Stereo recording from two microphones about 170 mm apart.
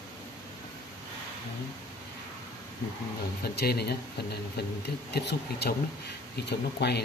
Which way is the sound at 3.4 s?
70° left (ahead or behind).